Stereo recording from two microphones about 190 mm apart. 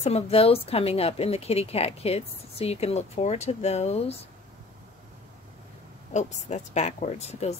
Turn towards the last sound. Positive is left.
turn(degrees=35)  # may be behind; listen again after turning